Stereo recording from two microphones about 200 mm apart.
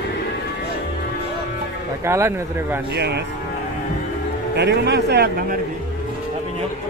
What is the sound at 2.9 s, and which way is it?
Speech, 55° right (ahead or behind).